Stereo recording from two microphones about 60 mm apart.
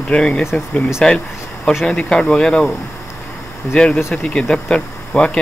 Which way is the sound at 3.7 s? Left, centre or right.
Centre.